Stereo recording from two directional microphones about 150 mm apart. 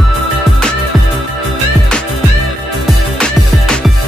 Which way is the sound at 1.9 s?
5° left (ahead or behind).